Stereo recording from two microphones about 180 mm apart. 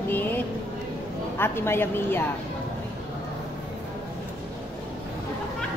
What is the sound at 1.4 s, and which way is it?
Speech, 15° left (ahead or behind).